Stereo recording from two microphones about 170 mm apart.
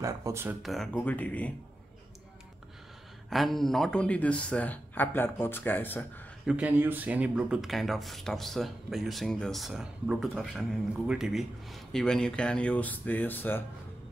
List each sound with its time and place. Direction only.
0.0 s speech: 15° right (ahead or behind)
0.6 s speech: centre (ahead or behind)
3.3 s speech: centre (ahead or behind)
6.4 s speech: 10° right (ahead or behind); by 13.7 s 10° left (ahead or behind)